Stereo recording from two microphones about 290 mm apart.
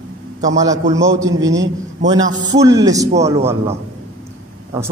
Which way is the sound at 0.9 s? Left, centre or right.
Centre.